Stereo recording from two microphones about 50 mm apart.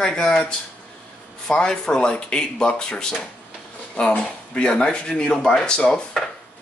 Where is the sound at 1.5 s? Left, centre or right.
Centre.